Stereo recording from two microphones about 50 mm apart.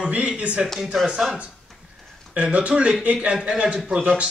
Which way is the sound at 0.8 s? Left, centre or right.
Centre.